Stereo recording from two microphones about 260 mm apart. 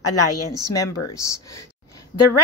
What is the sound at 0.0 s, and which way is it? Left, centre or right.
Speech, left.